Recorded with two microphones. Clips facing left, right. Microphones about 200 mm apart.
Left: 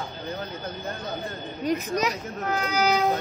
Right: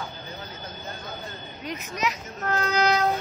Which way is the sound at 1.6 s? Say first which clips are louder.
Left 5 dB; 40° left (ahead or behind).